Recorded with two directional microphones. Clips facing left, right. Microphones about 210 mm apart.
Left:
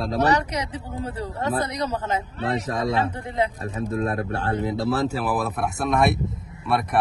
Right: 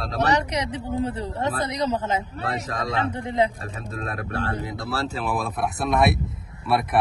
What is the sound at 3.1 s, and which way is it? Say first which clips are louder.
Speech: right 2 dB; 25° right (ahead or behind).